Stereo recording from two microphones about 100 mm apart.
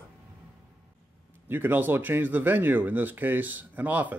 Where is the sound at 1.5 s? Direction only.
20° right (ahead or behind).